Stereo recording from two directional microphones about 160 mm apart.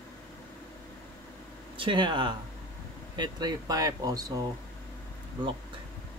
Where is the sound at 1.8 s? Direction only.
30° right (ahead or behind).